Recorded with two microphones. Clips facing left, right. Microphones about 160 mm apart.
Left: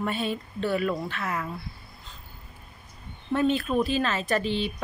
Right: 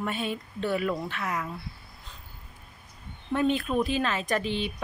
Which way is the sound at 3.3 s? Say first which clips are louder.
Left 1 dB; 15° right (ahead or behind).